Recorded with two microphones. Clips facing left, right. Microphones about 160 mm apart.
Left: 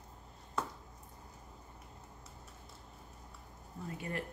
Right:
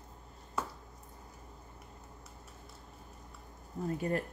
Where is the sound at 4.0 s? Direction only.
40° right (ahead or behind).